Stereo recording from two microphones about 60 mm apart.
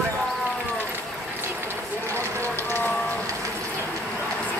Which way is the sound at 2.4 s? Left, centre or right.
Left.